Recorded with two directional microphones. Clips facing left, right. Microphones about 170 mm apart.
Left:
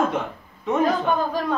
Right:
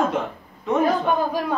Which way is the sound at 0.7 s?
Centre (ahead or behind).